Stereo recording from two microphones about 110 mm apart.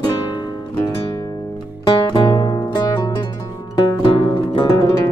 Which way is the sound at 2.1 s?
40° left (ahead or behind).